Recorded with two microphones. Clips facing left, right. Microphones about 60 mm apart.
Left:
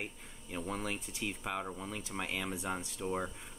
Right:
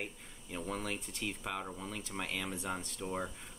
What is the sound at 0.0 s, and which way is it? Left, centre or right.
Speech, centre.